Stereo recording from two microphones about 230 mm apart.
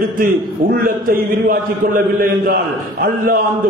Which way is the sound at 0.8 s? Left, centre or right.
Right.